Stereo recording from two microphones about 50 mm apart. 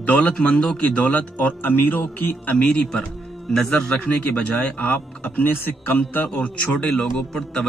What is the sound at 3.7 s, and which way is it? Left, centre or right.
Speech, left.